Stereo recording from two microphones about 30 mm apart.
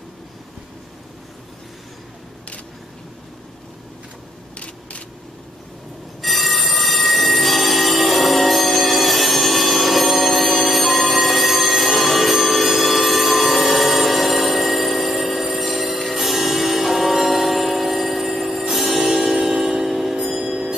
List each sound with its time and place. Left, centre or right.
6.2 s train: centre
16.2 s music: centre
19.5 s a sound: centre
19.9 s bell: centre